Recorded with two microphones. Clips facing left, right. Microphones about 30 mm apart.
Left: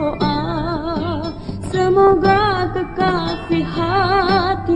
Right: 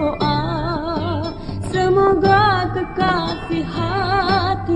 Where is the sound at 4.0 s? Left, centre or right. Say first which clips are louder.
Left 3 dB; left.